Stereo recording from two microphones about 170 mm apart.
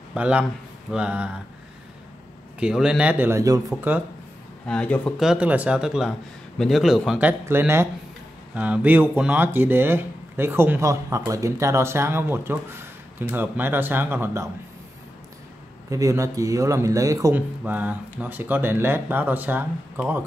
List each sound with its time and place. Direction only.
0.1 s speech: 5° right (ahead or behind)
2.6 s speech: 5° right (ahead or behind)
4.6 s speech: 5° left (ahead or behind); by 14.5 s 15° right (ahead or behind)
15.9 s a man's voice: 20° right (ahead or behind)